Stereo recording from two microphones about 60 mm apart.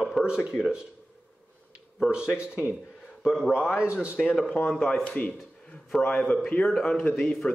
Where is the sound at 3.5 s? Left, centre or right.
Centre.